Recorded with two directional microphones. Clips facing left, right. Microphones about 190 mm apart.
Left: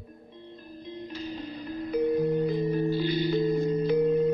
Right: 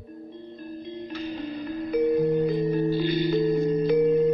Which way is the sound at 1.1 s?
70° right (ahead or behind).